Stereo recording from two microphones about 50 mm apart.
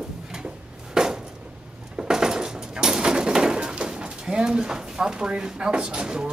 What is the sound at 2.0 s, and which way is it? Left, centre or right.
Bird, centre.